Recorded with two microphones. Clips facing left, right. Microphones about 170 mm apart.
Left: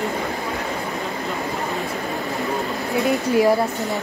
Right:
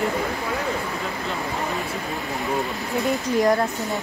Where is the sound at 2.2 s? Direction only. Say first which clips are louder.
Left 3 dB; centre (ahead or behind).